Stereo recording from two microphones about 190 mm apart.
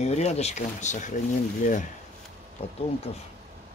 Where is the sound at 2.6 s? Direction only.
30° left (ahead or behind).